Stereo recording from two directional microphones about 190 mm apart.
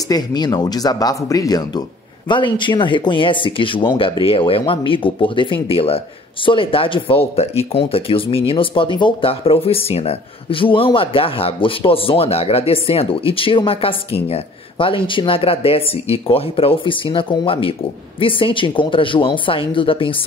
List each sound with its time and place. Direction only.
0.1 s speech: 20° left (ahead or behind)